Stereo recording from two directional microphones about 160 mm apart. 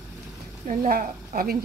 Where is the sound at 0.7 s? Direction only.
55° right (ahead or behind).